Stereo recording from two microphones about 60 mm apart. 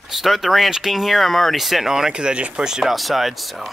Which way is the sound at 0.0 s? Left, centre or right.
Centre.